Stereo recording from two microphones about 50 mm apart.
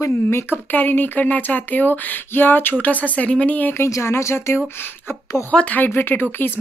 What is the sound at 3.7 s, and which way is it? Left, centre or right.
Speech, left.